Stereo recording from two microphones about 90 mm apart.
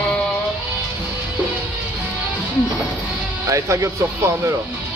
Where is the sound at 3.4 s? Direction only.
35° right (ahead or behind).